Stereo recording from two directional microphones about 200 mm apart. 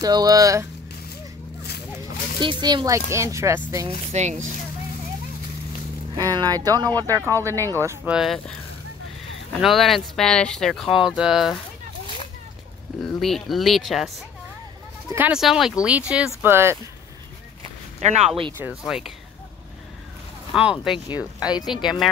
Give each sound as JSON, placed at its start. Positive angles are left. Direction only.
{"t": 0.0, "sound": "speech", "side_deg": -20}
{"t": 2.4, "sound": "speech", "side_deg": -20}
{"t": 4.1, "sound": "speech", "side_deg": -35}
{"t": 6.1, "sound": "speech", "side_deg": -20}
{"t": 7.5, "sound": "speech", "side_deg": 10}
{"t": 7.8, "sound": "speech", "side_deg": -10}
{"t": 9.6, "sound": "speech", "side_deg": 0}
{"t": 13.0, "sound": "speech", "side_deg": 0}
{"t": 18.0, "sound": "speech", "side_deg": -35}
{"t": 18.9, "sound": "speech", "side_deg": 0}
{"t": 20.5, "sound": "speech", "side_deg": -5}